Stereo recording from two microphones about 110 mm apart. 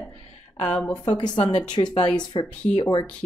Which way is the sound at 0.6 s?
10° left (ahead or behind).